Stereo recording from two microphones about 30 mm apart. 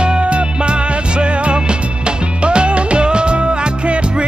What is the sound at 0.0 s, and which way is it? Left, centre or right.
Music, right.